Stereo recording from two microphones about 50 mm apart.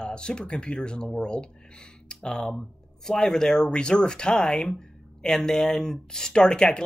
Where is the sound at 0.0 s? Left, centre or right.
Centre.